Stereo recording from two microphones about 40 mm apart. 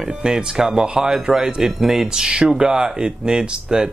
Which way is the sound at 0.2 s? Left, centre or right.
Centre.